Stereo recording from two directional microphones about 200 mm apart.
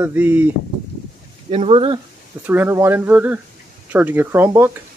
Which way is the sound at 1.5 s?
30° right (ahead or behind).